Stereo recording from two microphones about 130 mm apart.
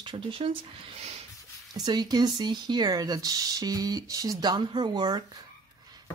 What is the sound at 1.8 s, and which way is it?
Speech, 30° right (ahead or behind).